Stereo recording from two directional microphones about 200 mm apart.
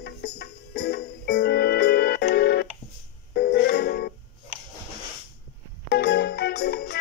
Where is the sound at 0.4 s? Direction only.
55° left (ahead or behind).